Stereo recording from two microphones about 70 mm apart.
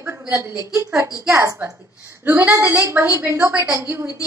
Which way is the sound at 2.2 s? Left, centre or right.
Right.